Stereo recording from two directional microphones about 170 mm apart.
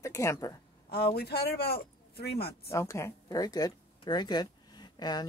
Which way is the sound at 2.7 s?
15° left (ahead or behind).